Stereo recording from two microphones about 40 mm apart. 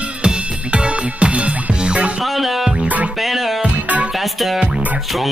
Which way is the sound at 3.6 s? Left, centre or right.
Right.